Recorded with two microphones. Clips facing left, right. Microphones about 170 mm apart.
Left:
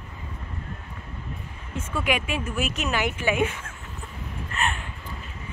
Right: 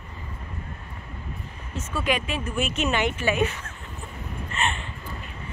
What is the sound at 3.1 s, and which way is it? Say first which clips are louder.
Speech: even; 15° left (ahead or behind).